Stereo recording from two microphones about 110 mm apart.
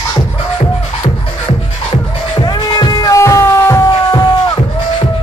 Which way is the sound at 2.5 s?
40° left (ahead or behind).